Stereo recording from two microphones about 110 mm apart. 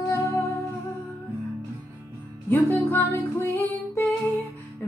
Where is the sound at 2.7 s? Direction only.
20° left (ahead or behind).